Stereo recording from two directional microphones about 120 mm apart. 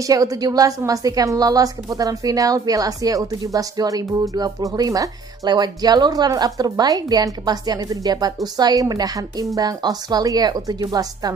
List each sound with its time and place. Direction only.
0.0 s a woman's voice: 30° right (ahead or behind)